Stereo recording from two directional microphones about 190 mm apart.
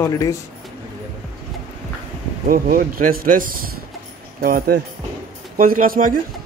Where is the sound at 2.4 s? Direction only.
50° right (ahead or behind).